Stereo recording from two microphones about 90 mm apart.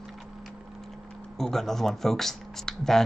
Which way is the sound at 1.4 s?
5° left (ahead or behind).